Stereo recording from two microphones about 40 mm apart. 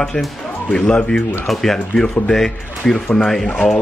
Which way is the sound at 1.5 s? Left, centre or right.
Centre.